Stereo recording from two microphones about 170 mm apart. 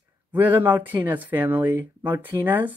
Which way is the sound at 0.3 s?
10° right (ahead or behind).